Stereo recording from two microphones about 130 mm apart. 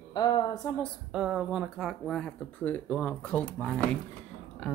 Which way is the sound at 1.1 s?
5° right (ahead or behind).